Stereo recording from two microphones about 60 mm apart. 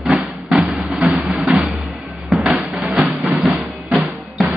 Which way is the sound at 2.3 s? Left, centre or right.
Centre.